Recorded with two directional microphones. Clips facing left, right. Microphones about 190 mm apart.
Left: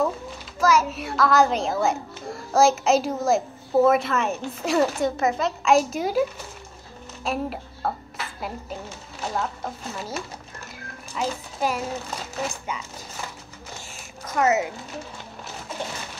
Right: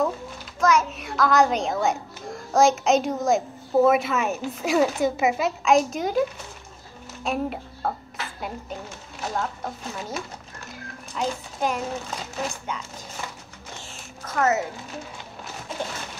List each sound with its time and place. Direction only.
0.6 s a child's voice: 5° left (ahead or behind)
7.2 s a child's voice: centre (ahead or behind)
14.2 s speech: 15° left (ahead or behind)